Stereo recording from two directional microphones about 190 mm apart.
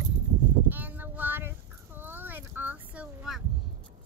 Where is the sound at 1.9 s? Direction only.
10° right (ahead or behind).